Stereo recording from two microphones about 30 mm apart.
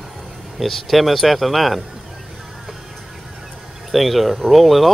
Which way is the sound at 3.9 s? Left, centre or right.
Centre.